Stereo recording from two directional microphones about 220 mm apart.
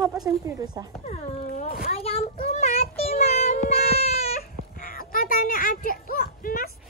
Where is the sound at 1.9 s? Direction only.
25° left (ahead or behind).